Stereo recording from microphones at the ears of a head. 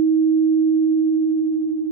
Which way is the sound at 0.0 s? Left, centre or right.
Right.